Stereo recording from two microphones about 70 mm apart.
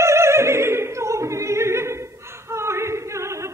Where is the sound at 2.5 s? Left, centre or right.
Right.